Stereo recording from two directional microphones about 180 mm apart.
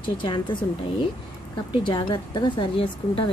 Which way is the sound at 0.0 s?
25° left (ahead or behind).